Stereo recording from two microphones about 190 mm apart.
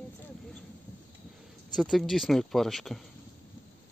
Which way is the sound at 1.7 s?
Centre (ahead or behind).